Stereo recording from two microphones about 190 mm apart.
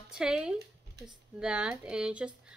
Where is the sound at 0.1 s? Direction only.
5° right (ahead or behind).